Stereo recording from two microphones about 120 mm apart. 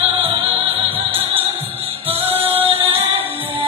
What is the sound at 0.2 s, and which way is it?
Music, 50° right (ahead or behind).